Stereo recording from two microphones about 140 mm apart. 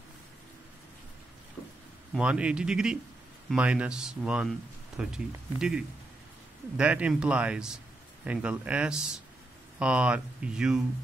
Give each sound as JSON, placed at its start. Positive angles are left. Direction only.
{"t": 2.1, "sound": "speech", "side_deg": -10}